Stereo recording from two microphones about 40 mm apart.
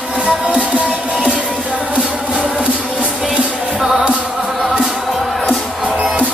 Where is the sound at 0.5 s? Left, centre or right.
Right.